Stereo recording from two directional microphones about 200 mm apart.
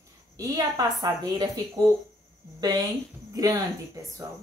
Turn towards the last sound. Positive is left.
turn(degrees=-20)  # may be behind; listen again after turning